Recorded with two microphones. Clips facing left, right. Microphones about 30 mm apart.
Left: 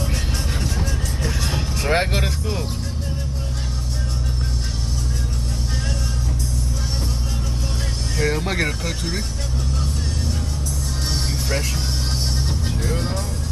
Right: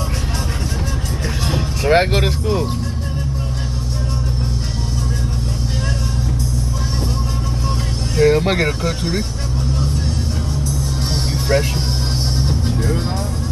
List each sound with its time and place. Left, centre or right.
1.5 s music: centre
2.0 s speech: right
8.2 s speech: right
11.5 s speech: right
12.4 s music: centre